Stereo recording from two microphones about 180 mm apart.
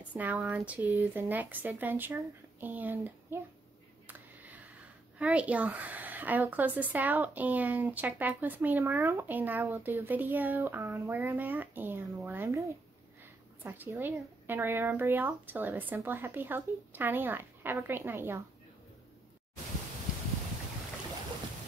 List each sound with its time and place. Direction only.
0.1 s a woman's voice: 10° right (ahead or behind)
4.1 s a sound: 10° right (ahead or behind)
5.2 s a woman's voice: 5° right (ahead or behind)